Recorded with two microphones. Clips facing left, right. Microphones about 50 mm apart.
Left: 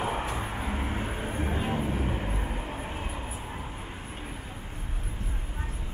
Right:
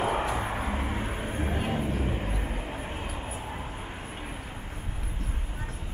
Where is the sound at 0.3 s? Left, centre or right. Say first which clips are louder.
Right 3 dB; centre.